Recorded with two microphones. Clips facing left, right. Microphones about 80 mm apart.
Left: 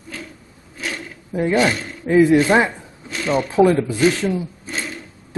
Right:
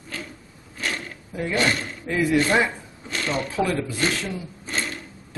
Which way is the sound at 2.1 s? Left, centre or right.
Left.